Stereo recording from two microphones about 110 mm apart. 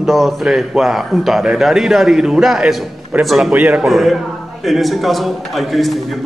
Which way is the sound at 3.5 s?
20° right (ahead or behind).